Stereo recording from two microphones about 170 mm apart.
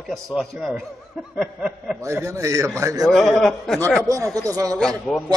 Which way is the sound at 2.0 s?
15° right (ahead or behind).